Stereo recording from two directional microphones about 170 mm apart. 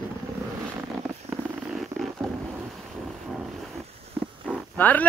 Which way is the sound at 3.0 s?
Centre (ahead or behind).